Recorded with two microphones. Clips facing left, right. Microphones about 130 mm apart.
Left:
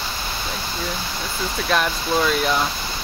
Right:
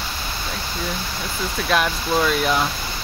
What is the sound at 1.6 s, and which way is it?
Speech, centre (ahead or behind).